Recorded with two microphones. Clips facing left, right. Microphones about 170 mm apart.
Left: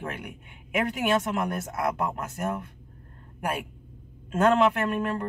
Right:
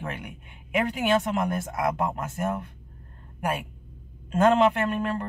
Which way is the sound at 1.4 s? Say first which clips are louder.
Right 2 dB; centre (ahead or behind).